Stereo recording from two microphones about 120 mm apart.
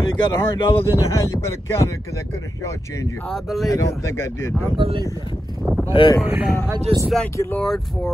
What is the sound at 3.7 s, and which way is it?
Speech, 25° left (ahead or behind).